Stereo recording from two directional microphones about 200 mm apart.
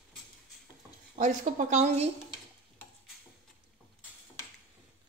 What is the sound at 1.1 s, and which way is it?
A woman's voice, 40° right (ahead or behind).